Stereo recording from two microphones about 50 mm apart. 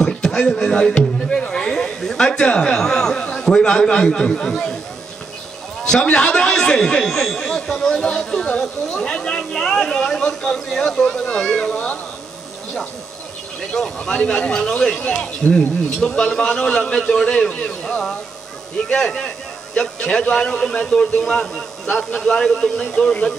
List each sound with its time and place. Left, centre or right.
0.0 s a sound: centre
0.9 s speech: centre
5.9 s a man's voice: centre
13.6 s speech: centre